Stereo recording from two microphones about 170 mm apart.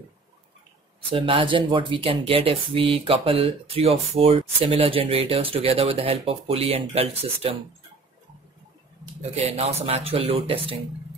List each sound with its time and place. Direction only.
1.1 s speech: 30° right (ahead or behind)
9.3 s speech: 40° right (ahead or behind)